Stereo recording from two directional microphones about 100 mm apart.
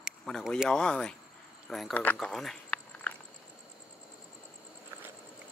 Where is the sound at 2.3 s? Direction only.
5° left (ahead or behind).